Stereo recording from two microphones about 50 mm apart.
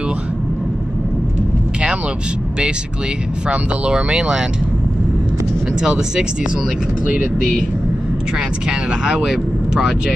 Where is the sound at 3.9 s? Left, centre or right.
Centre.